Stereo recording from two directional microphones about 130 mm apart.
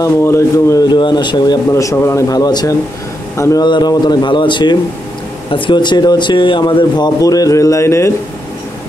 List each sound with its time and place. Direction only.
0.0 s speech: 20° left (ahead or behind)
0.9 s speech: 35° left (ahead or behind)
3.6 s speech: 35° left (ahead or behind)